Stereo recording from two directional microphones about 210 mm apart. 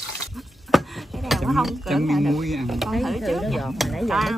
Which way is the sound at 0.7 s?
Centre (ahead or behind).